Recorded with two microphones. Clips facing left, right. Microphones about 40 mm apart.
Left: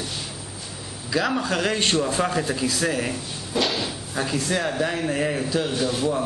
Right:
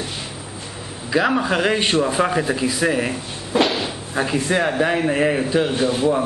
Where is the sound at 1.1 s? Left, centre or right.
Right.